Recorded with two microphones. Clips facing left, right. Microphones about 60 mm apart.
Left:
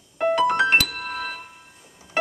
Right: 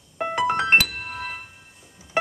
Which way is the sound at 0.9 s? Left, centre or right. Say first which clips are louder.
Left 3 dB; left.